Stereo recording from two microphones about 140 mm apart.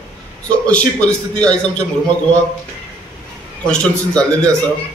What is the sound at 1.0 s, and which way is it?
Speech, 10° left (ahead or behind).